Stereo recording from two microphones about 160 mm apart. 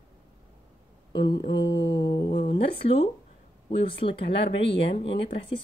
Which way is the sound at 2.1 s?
75° left (ahead or behind).